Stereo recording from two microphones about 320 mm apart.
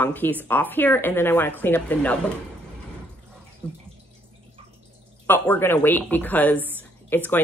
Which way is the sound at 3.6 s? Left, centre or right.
Centre.